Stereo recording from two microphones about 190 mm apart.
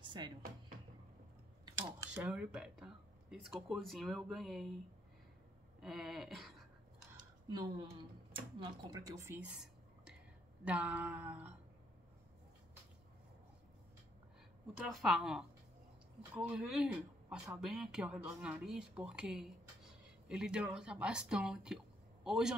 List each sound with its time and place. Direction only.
0.0 s music: 25° right (ahead or behind)
2.1 s speech: 5° right (ahead or behind)
5.8 s speech: centre (ahead or behind)
7.2 s speech: 25° right (ahead or behind); by 10.1 s 5° right (ahead or behind)
10.6 s a sound: 5° right (ahead or behind)
14.8 s a man's voice: centre (ahead or behind)